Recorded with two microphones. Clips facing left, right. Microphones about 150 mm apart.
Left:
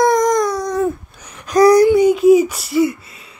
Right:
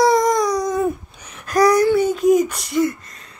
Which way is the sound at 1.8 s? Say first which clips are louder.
Left 5 dB; 15° left (ahead or behind).